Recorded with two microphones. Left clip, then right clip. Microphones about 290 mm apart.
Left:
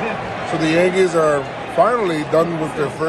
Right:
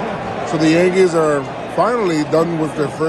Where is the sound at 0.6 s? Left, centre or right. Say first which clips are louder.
Right 2 dB; centre.